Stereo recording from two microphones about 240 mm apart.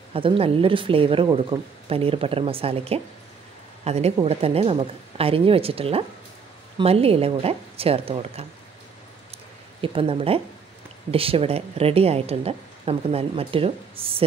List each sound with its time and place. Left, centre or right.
0.1 s a woman's voice: right
9.8 s a woman's voice: right